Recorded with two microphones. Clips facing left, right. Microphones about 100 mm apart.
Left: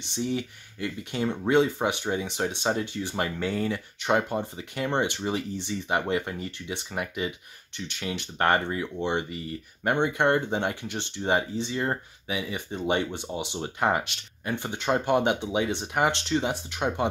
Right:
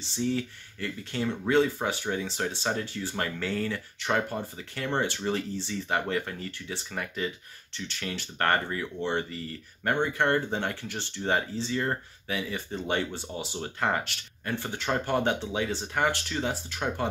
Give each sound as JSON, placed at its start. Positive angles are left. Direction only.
{"t": 0.1, "sound": "speech", "side_deg": 15}